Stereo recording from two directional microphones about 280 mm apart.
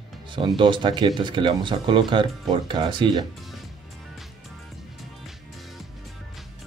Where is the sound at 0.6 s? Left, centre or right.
Centre.